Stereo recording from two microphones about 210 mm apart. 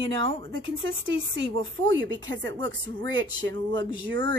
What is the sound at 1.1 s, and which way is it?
Speech, 60° right (ahead or behind).